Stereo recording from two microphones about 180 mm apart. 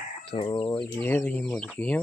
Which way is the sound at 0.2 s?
30° left (ahead or behind).